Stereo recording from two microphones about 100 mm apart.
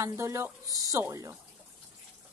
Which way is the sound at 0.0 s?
30° right (ahead or behind).